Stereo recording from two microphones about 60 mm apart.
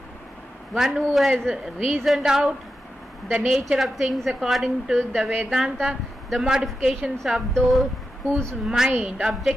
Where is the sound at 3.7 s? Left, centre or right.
Centre.